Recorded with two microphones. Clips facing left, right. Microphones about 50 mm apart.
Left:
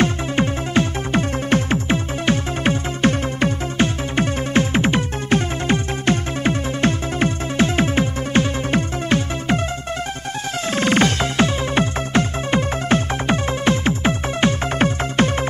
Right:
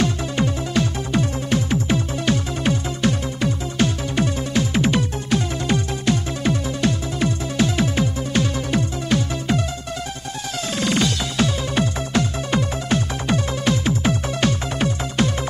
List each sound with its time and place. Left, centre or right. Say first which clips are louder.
0.0 s music: left 2 dB; left
10.7 s music: left 4 dB; left